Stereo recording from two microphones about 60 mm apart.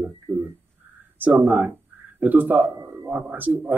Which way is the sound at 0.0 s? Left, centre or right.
Right.